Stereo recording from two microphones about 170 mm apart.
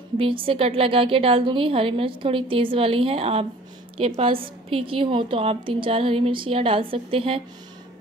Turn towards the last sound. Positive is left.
turn(degrees=-35)  # may be behind; listen again after turning